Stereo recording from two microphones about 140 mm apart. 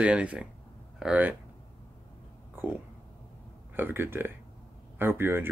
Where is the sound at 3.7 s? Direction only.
15° right (ahead or behind).